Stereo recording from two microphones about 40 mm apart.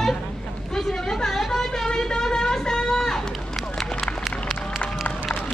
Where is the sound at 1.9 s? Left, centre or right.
Centre.